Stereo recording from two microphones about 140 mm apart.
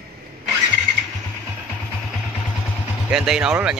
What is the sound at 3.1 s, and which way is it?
Speech, 5° right (ahead or behind).